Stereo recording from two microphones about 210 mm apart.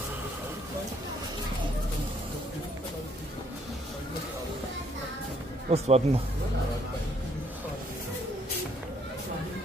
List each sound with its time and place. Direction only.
5.7 s speech: 30° right (ahead or behind)